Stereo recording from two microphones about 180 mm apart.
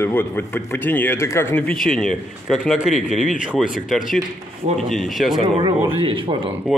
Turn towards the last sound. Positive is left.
turn(degrees=-30)  # may be behind; listen again after turning